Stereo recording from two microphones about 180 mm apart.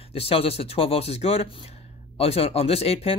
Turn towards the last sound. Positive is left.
turn(degrees=35)  # may be behind; listen again after turning